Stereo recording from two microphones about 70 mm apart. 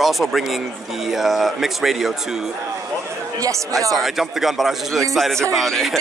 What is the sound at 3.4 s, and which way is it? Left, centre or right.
Speech, right.